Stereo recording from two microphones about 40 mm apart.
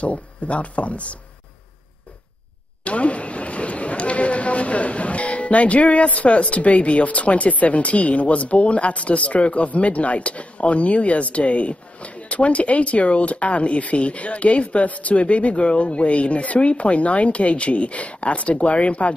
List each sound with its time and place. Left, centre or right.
0.0 s speech: left
2.8 s speech: left